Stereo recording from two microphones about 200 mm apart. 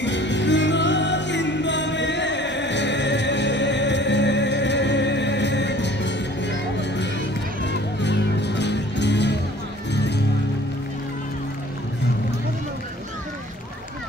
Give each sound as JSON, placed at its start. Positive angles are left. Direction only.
{"t": 0.0, "sound": "music", "side_deg": 65}